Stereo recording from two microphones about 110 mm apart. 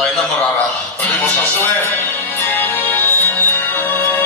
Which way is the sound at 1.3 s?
15° left (ahead or behind).